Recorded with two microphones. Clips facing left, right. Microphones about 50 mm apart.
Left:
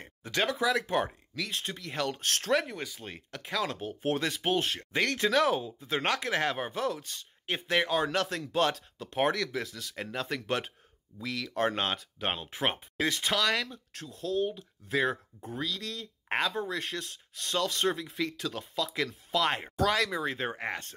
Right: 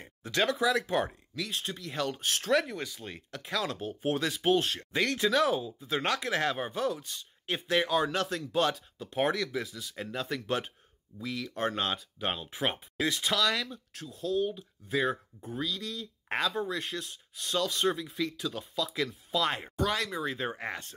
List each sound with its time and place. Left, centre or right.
0.0 s a sound: left
0.4 s speech: left
1.3 s speech: left
2.5 s speech: left
4.4 s speech: left
8.7 s speech: left
9.3 s speech: left
10.1 s speech: left
11.2 s speech: left
11.8 s speech: left
16.3 s speech: left